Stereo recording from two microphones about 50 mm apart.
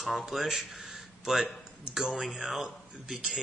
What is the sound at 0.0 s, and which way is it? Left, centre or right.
A man's voice, centre.